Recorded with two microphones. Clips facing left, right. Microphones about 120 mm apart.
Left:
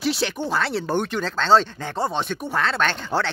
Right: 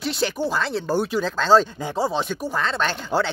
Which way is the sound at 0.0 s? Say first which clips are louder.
Even; centre (ahead or behind).